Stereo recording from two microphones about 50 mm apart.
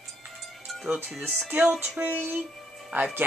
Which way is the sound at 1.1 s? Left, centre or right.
Centre.